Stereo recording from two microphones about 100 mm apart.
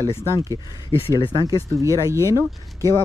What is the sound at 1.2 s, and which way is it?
Speech, 50° left (ahead or behind).